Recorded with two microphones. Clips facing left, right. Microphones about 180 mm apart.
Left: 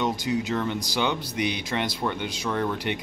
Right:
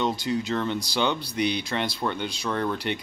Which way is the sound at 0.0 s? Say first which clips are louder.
Even; 15° left (ahead or behind).